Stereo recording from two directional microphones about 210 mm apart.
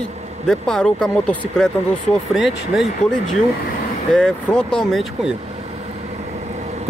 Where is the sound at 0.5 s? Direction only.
5° left (ahead or behind).